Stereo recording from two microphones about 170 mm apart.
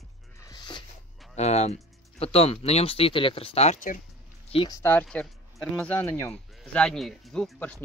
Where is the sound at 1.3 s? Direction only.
40° left (ahead or behind).